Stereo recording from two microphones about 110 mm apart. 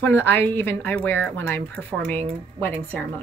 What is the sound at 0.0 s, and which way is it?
A woman's voice, 20° left (ahead or behind).